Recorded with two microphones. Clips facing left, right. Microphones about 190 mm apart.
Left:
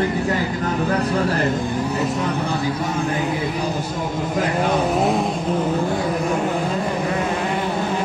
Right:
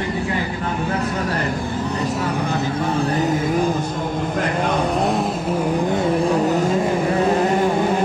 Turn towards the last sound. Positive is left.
turn(degrees=-35)  # may be behind; listen again after turning